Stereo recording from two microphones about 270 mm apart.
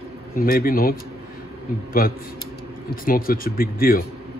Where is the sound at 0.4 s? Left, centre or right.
Left.